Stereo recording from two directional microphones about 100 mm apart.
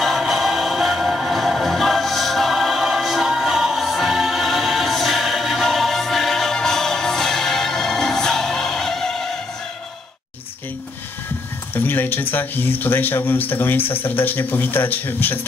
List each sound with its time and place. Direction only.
0.0 s music: centre (ahead or behind)
11.7 s speech: 20° left (ahead or behind)